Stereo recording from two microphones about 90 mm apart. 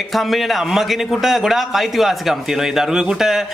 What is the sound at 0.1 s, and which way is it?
A man's voice, centre (ahead or behind).